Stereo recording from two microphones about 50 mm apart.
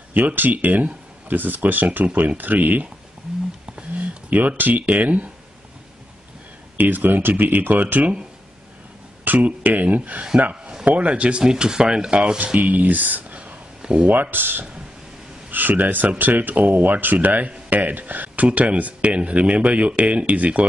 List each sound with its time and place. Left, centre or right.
0.1 s speech: right
3.9 s speech: right
6.8 s speech: right
9.2 s speech: right
10.5 s a sound: centre
10.9 s speech: right
12.5 s speech: right